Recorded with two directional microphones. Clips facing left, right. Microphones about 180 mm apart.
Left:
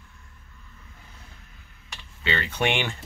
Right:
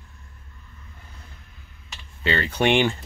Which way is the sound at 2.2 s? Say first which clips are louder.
Right 4 dB; 40° right (ahead or behind).